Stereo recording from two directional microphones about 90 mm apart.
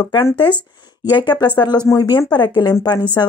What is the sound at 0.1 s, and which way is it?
Speech, 65° left (ahead or behind).